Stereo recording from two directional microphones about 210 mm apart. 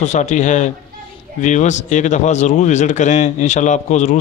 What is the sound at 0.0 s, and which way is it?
Speech, 35° left (ahead or behind).